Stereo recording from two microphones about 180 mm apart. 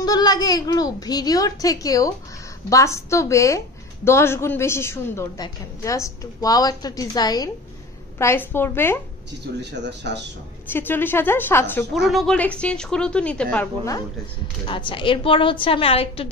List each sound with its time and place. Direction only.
0.0 s a woman's voice: 20° left (ahead or behind)
9.6 s speech: 70° right (ahead or behind)
10.7 s a woman's voice: 10° left (ahead or behind)
11.9 s a woman's voice: centre (ahead or behind)
14.7 s a woman's voice: 30° left (ahead or behind)